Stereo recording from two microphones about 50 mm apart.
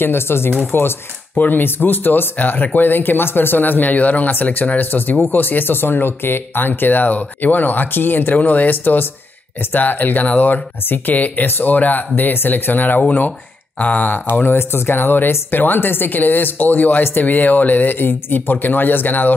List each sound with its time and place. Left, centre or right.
0.0 s speech: left
13.0 s speech: left
14.6 s speech: left